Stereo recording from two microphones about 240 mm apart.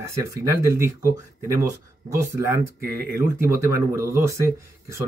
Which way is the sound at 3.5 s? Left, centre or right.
Centre.